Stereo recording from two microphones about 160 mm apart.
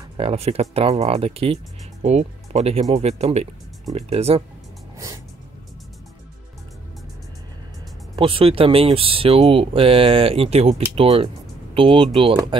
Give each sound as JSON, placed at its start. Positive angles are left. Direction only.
{"t": 0.2, "sound": "speech", "side_deg": -40}
{"t": 4.9, "sound": "music", "side_deg": -20}
{"t": 8.2, "sound": "speech", "side_deg": -35}